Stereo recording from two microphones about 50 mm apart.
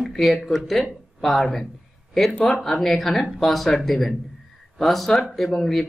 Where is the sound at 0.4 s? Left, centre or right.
Centre.